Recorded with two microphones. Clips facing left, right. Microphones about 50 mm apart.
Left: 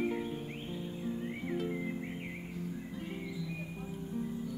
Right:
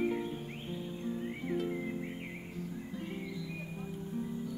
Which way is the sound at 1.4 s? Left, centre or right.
Centre.